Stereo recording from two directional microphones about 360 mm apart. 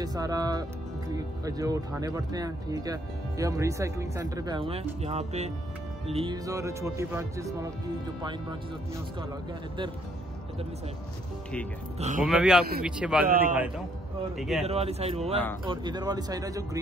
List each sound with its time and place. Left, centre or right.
0.0 s speech: centre
12.0 s speech: centre
12.3 s a man's voice: centre
14.3 s a man's voice: centre
14.6 s speech: centre